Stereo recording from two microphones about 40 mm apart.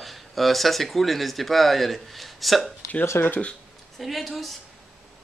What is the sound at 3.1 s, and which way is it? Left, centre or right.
Speech, left.